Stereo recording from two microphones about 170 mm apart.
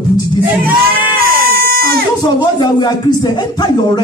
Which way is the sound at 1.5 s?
65° right (ahead or behind).